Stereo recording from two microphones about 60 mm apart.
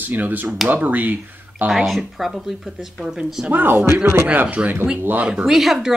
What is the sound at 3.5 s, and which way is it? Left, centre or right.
Speech, right.